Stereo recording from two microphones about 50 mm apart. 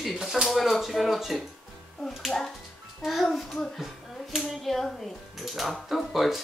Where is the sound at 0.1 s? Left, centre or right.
Centre.